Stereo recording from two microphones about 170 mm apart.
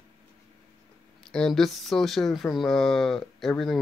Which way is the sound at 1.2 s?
5° left (ahead or behind).